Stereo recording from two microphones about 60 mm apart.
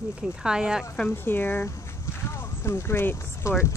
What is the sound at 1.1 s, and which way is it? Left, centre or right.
Speech, left.